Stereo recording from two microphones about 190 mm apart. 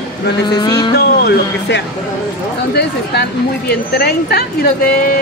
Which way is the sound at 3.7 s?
55° left (ahead or behind).